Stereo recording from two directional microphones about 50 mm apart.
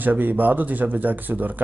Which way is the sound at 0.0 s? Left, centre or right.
Right.